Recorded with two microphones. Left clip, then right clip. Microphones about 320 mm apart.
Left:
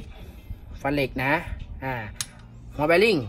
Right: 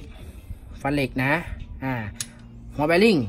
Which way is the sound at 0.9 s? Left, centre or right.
Right.